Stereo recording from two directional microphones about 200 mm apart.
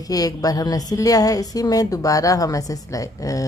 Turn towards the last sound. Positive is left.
turn(degrees=15)  # may be behind; listen again after turning